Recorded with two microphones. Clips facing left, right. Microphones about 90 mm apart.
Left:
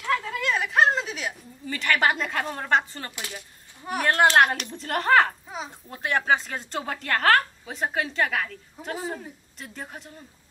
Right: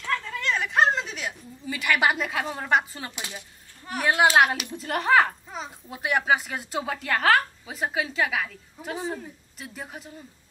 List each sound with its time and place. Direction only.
0.0 s a sound: 5° left (ahead or behind)
3.2 s a woman's voice: 20° right (ahead or behind); by 5.7 s centre (ahead or behind)
5.9 s a woman's voice: 10° right (ahead or behind)